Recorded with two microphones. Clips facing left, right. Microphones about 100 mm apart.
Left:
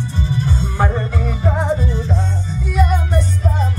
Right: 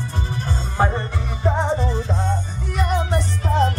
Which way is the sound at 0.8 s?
25° right (ahead or behind).